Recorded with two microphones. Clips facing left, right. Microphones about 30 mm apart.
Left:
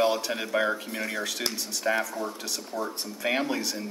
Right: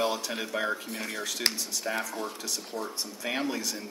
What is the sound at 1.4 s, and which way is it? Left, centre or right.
Speech, right.